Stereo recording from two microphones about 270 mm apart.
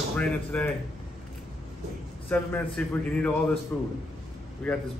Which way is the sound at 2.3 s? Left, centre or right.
Centre.